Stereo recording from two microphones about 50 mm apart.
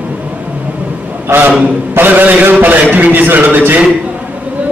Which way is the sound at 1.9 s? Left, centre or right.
Right.